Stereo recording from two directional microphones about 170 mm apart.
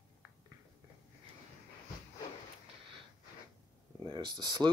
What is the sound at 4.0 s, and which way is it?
Speech, 25° right (ahead or behind).